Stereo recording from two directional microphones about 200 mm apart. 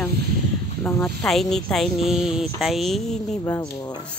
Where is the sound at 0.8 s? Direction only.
Centre (ahead or behind).